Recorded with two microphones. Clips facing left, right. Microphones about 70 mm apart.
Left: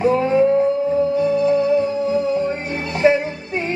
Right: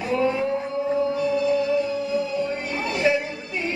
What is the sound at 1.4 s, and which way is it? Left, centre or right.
Music, left.